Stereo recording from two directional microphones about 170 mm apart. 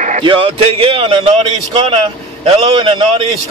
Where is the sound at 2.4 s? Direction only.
35° right (ahead or behind).